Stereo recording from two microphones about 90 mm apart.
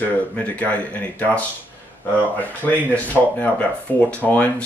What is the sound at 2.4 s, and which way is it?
Speech, 15° left (ahead or behind).